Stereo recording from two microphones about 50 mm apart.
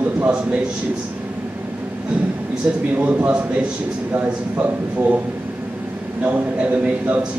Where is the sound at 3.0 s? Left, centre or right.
Right.